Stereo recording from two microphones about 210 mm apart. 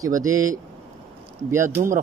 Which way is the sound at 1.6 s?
40° right (ahead or behind).